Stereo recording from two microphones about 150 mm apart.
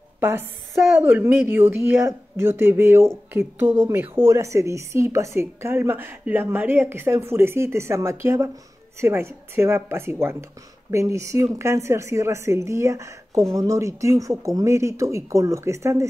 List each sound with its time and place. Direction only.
0.2 s a woman's voice: 15° right (ahead or behind)